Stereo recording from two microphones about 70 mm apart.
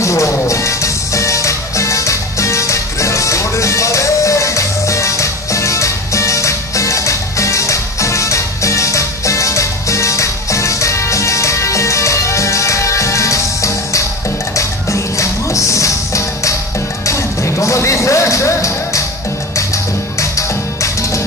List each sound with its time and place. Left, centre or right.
0.0 s music: left